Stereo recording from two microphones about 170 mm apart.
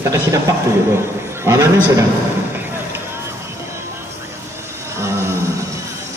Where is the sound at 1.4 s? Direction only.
15° right (ahead or behind).